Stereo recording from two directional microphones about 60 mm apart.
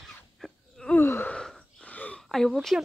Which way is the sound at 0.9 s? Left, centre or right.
Left.